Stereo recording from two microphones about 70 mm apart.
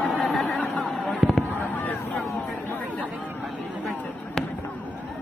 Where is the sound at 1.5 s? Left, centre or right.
Left.